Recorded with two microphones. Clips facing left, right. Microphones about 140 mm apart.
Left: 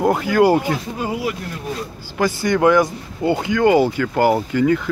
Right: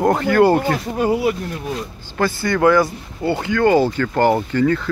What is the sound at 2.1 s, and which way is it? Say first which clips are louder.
Speech: left 1 dB; 15° left (ahead or behind).